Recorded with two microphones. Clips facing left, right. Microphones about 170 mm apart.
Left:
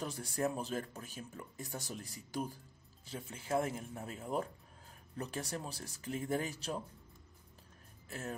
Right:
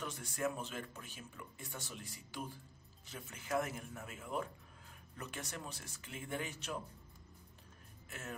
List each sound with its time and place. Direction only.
0.0 s speech: 35° left (ahead or behind)
3.1 s speech: 30° left (ahead or behind)
8.1 s speech: 35° left (ahead or behind)